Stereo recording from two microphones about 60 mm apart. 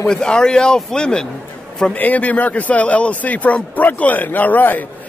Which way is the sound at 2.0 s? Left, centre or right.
Left.